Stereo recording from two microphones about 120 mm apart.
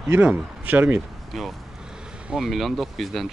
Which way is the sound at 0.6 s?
15° right (ahead or behind).